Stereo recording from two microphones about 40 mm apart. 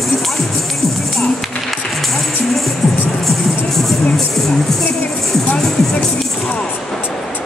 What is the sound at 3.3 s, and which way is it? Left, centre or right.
Music, centre.